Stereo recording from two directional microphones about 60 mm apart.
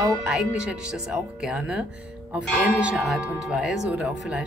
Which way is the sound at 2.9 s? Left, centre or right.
Centre.